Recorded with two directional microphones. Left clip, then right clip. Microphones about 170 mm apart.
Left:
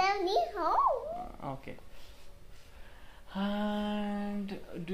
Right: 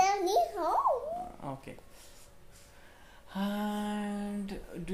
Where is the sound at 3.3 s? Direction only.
5° right (ahead or behind).